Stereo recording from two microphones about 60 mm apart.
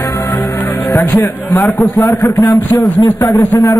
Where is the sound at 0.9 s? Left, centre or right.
Left.